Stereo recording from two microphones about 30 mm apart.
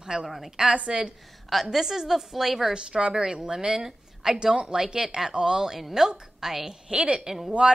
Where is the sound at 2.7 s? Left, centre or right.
Right; by 4.4 s centre.